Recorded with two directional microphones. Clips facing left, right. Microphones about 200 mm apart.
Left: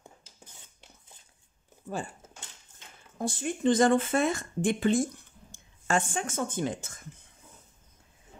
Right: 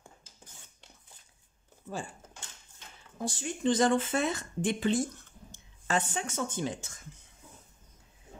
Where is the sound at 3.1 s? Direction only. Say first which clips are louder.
Left 4 dB; 55° left (ahead or behind).